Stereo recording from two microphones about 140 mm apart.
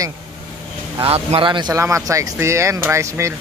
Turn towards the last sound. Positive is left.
turn(degrees=-20)  # may be behind; listen again after turning